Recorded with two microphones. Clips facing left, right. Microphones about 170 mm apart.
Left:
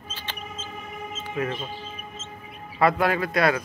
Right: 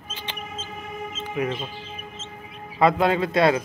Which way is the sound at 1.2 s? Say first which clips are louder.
Right 2 dB; 15° right (ahead or behind).